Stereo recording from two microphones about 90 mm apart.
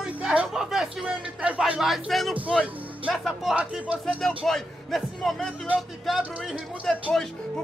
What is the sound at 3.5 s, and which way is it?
Speech, 15° right (ahead or behind).